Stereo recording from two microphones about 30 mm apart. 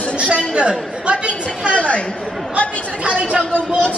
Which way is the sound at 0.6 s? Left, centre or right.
Right.